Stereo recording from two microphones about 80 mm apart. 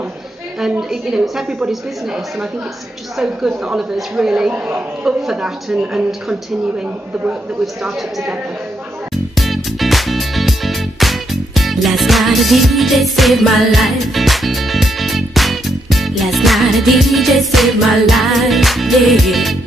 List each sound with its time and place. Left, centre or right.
0.6 s a woman's voice: centre
4.5 s a man's voice: right
5.0 s a woman's voice: centre
7.6 s a woman's voice: centre
9.1 s music: centre